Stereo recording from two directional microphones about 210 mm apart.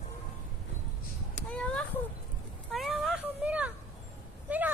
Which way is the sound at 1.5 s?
5° left (ahead or behind).